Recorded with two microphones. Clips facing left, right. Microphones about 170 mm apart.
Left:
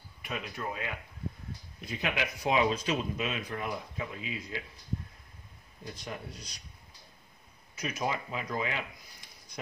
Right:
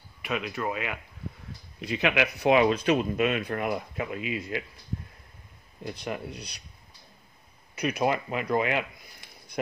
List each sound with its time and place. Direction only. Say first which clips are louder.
0.2 s speech: right 7 dB; 85° right; by 4.6 s 65° right (ahead or behind)
5.9 s speech: right 7 dB; 70° right (ahead or behind)
7.7 s speech: right 7 dB; 65° right (ahead or behind)